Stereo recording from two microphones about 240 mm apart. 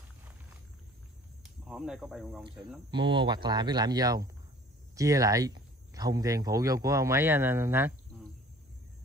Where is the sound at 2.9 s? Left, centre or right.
Centre.